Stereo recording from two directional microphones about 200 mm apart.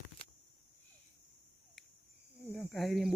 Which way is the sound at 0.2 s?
25° left (ahead or behind).